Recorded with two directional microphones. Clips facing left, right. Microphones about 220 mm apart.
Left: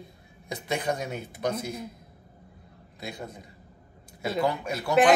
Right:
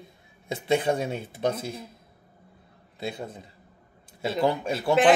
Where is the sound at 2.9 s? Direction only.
30° right (ahead or behind).